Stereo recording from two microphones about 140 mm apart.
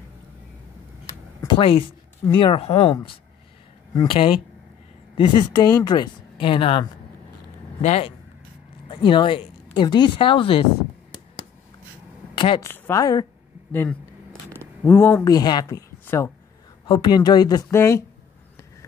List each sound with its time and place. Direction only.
1.5 s speech: 40° left (ahead or behind)
3.9 s speech: 35° left (ahead or behind)
7.8 s speech: 55° left (ahead or behind)
8.8 s speech: 35° left (ahead or behind)
12.5 s speech: 15° left (ahead or behind)
13.7 s speech: 15° left (ahead or behind)
15.3 s speech: 30° left (ahead or behind)
16.1 s speech: 15° left (ahead or behind)
16.8 s speech: 30° left (ahead or behind)